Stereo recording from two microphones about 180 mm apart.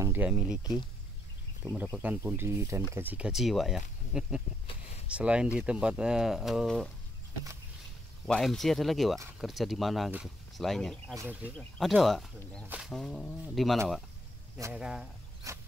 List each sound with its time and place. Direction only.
0.0 s speech: 10° right (ahead or behind)
8.3 s speech: centre (ahead or behind)
11.1 s speech: 10° right (ahead or behind)
11.5 s speech: centre (ahead or behind)
15.5 s dog: 15° right (ahead or behind)